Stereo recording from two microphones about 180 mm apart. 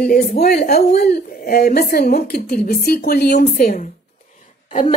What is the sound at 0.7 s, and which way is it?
Speech, 60° left (ahead or behind).